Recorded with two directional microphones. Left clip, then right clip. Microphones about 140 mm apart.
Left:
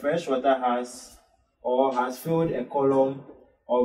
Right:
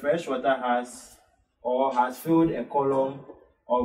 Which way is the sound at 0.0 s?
15° right (ahead or behind).